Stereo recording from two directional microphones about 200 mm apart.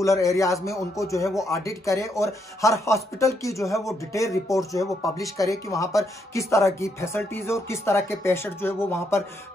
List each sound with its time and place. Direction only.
0.0 s speech: 15° left (ahead or behind)